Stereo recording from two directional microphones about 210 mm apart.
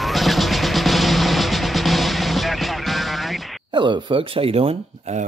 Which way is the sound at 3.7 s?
20° right (ahead or behind).